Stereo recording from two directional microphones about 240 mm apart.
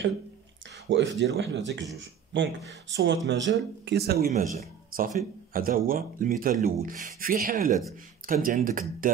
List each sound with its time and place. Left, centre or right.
0.8 s speech: right
4.3 s speech: right